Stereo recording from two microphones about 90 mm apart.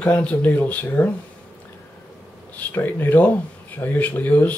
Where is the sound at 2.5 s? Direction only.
20° left (ahead or behind).